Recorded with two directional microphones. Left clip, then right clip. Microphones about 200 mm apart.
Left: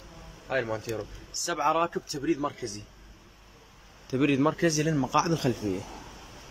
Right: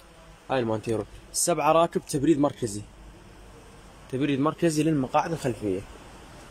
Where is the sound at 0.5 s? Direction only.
20° right (ahead or behind).